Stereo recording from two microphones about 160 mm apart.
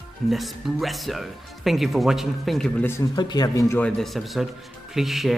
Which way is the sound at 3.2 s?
25° left (ahead or behind).